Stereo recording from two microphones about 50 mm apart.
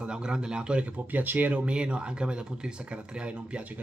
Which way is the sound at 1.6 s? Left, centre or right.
Right.